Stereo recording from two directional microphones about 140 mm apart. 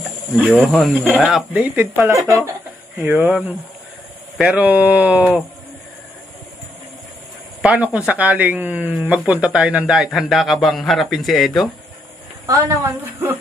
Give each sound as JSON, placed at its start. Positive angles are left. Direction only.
{"t": 0.7, "sound": "a man's voice", "side_deg": 0}
{"t": 7.6, "sound": "a man's voice", "side_deg": -10}
{"t": 12.4, "sound": "a woman's voice", "side_deg": -25}